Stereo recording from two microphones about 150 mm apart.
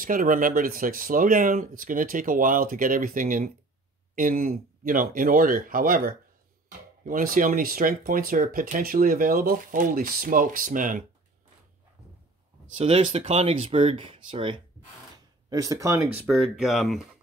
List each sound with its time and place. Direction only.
0.0 s speech: 65° right (ahead or behind)
12.7 s speech: 40° right (ahead or behind)
15.5 s speech: 25° right (ahead or behind)
16.5 s speech: 5° right (ahead or behind)